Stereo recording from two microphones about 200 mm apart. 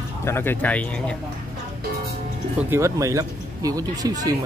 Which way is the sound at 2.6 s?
15° right (ahead or behind).